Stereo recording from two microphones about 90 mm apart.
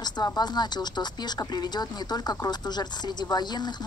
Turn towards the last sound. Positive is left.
turn(degrees=55)  # may be behind; listen again after turning